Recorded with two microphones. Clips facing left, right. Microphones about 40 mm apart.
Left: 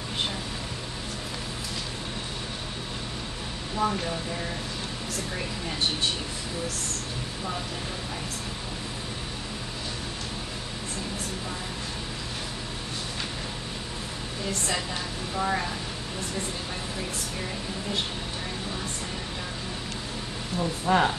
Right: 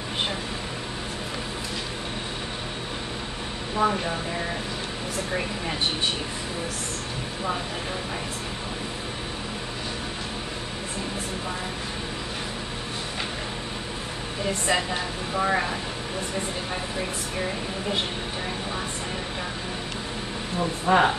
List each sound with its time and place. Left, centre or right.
3.7 s a woman's voice: right
14.4 s a woman's voice: right
17.4 s a woman's voice: right
20.5 s a woman's voice: centre